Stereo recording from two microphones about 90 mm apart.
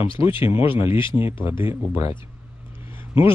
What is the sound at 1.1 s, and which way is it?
Speech, 25° right (ahead or behind).